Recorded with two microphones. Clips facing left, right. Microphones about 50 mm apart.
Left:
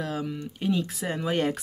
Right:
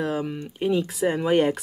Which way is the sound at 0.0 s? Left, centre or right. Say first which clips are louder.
Right 4 dB; right.